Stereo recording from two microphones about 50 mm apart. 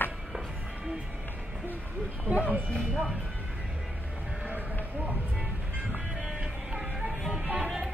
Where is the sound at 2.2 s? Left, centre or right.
Right.